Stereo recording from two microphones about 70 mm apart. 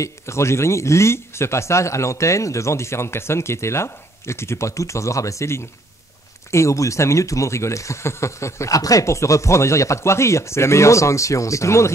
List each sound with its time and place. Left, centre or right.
0.0 s speech: left